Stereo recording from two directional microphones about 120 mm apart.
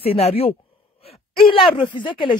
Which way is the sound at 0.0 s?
55° left (ahead or behind).